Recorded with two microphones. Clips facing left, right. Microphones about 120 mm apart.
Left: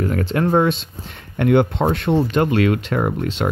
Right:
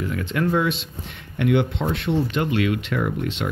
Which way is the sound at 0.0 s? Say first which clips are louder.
Left 4 dB; 40° left (ahead or behind).